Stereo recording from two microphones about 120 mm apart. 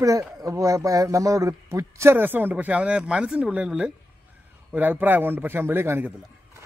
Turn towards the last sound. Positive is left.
turn(degrees=-15)  # may be behind; listen again after turning